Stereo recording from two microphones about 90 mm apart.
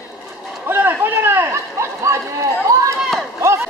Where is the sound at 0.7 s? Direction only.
20° right (ahead or behind).